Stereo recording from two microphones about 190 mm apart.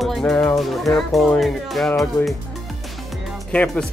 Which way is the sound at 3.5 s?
5° left (ahead or behind).